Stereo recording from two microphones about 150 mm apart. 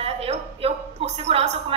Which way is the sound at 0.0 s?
40° right (ahead or behind).